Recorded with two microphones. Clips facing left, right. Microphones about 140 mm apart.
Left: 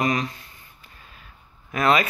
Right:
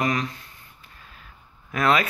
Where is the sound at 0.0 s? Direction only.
15° left (ahead or behind).